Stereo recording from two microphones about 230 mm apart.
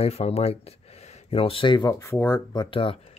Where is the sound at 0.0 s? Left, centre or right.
Left.